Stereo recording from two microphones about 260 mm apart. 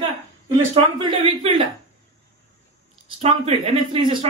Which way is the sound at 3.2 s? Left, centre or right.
Right.